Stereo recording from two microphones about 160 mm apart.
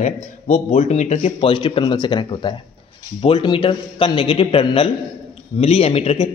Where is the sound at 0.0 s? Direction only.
45° left (ahead or behind).